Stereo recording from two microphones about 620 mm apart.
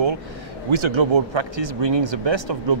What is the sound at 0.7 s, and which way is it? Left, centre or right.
Speech, right.